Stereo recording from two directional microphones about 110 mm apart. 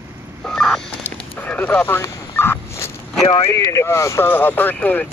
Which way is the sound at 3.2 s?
60° left (ahead or behind).